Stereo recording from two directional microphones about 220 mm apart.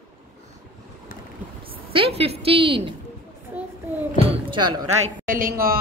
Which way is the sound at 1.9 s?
25° right (ahead or behind).